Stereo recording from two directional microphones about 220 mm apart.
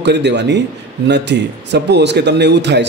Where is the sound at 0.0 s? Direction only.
50° right (ahead or behind).